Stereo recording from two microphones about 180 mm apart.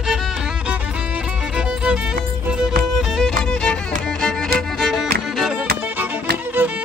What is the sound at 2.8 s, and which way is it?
Music, centre (ahead or behind).